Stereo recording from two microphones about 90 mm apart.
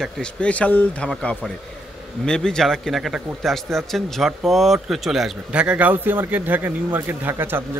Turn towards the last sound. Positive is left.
turn(degrees=-25)  # may be behind; listen again after turning